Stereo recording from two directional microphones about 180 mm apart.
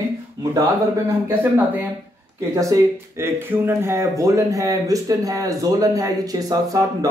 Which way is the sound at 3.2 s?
15° right (ahead or behind).